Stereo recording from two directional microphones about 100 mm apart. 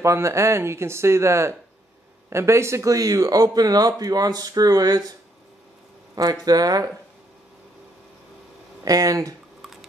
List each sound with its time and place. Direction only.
0.0 s speech: 30° right (ahead or behind)
6.4 s speech: 40° right (ahead or behind)
8.8 s speech: 35° right (ahead or behind)
9.6 s squish: centre (ahead or behind)